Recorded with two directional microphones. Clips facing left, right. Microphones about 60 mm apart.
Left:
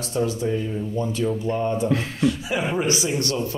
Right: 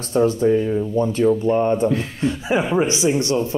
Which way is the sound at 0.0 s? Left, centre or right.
Right.